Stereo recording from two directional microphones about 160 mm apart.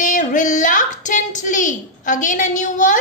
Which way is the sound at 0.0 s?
55° left (ahead or behind).